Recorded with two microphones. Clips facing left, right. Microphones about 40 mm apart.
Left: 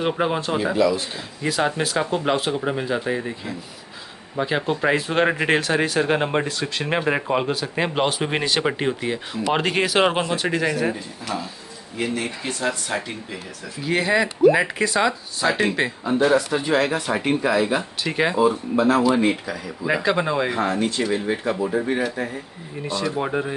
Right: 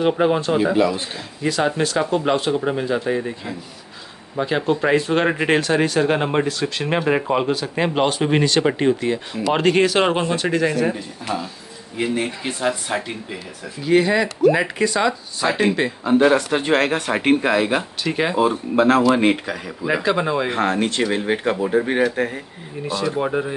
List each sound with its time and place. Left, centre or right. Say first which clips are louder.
0.0 s speech: right 4 dB; centre
4.4 s speech: right 2 dB; centre
12.2 s speech: right 3 dB; centre
13.8 s speech: right 3 dB; centre
16.1 s speech: right 3 dB; right
18.0 s speech: left 1 dB; centre
18.4 s speech: right 2 dB; right
19.9 s speech: right 1 dB; centre
20.5 s speech: right 2 dB; right
22.8 s speech: right 2 dB; centre